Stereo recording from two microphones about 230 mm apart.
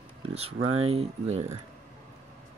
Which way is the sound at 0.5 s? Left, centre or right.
Right.